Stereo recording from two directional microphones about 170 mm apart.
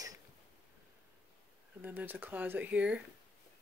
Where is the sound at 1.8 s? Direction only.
10° right (ahead or behind).